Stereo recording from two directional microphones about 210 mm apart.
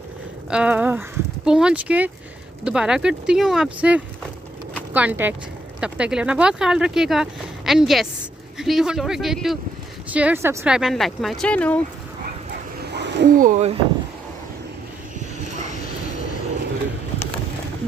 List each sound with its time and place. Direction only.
0.5 s speech: 5° right (ahead or behind)
12.9 s a sound: 55° right (ahead or behind)
13.4 s speech: 35° right (ahead or behind)